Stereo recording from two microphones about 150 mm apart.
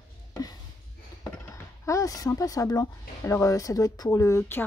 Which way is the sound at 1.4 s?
20° left (ahead or behind).